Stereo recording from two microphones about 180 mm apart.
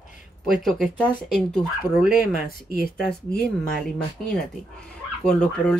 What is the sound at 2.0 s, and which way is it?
Speech, 50° left (ahead or behind).